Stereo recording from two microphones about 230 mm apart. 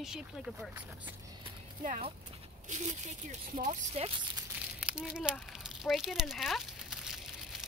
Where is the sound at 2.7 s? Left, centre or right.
Right.